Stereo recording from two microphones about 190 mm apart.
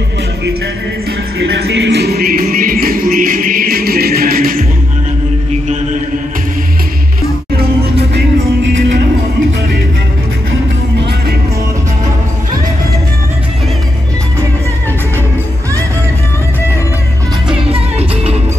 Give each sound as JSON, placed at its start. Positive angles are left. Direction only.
{"t": 1.4, "sound": "music", "side_deg": -65}
{"t": 17.6, "sound": "music", "side_deg": -30}